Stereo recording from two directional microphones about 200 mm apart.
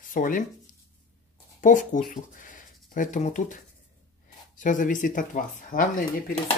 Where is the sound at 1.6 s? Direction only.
40° left (ahead or behind).